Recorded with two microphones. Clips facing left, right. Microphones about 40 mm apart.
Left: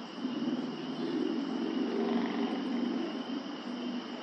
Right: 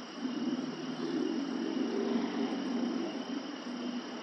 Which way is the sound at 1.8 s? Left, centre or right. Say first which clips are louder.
Left 1 dB; centre.